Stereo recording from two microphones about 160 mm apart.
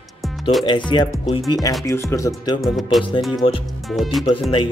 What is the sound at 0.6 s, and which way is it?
Music, 30° left (ahead or behind).